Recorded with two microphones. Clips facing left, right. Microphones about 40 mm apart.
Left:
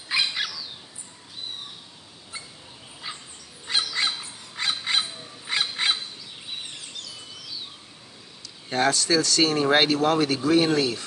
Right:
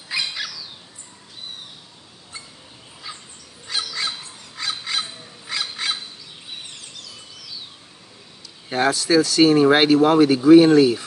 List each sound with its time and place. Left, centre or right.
0.1 s cat: left
3.1 s dog: left
4.6 s bird: left
5.5 s goose: left
8.6 s speech: centre